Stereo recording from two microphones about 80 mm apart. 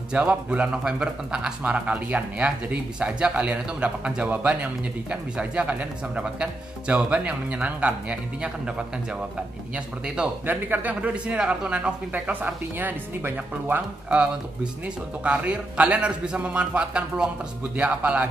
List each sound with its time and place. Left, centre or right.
0.1 s speech: centre
10.0 s speech: centre
10.4 s speech: right